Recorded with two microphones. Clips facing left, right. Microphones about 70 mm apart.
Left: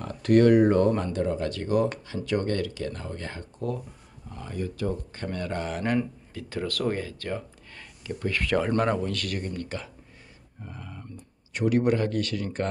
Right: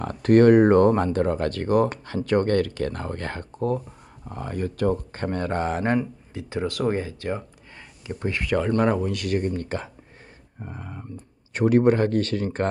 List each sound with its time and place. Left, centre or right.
0.0 s speech: right
5.9 s speech: right
8.6 s speech: centre
9.4 s speech: right